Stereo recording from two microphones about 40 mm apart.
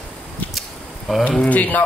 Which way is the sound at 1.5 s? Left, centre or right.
Left.